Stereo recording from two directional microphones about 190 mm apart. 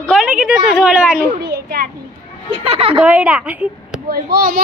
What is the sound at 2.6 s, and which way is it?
Speech, 30° right (ahead or behind).